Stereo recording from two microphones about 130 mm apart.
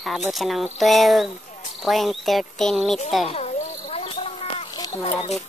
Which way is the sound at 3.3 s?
55° left (ahead or behind).